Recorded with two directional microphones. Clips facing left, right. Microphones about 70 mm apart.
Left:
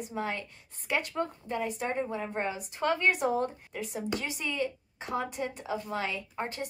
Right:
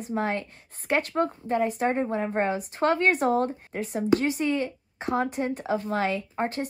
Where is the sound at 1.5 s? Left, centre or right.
Right.